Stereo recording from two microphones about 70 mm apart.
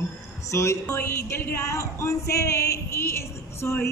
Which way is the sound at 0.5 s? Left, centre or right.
Left.